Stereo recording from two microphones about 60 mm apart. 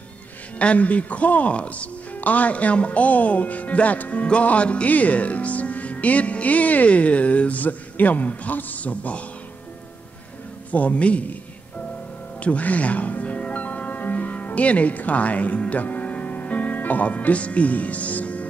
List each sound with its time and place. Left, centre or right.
0.6 s speech: left
10.7 s speech: left
12.4 s music: left